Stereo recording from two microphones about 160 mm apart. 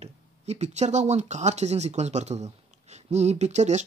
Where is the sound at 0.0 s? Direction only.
45° right (ahead or behind).